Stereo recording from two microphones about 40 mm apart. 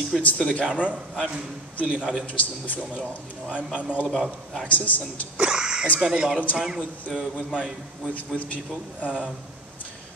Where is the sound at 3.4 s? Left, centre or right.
Right.